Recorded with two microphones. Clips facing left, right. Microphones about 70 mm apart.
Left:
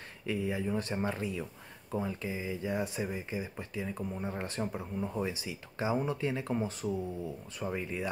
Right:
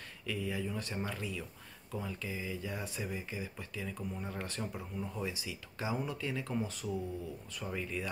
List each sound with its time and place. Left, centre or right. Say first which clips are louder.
0.3 s speech: left 5 dB; left